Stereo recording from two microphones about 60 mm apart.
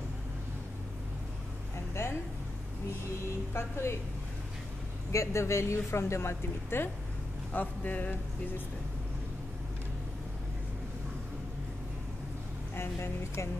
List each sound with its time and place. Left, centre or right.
3.5 s a woman's voice: left
5.1 s a woman's voice: left
7.5 s speech: left
12.7 s a woman's voice: left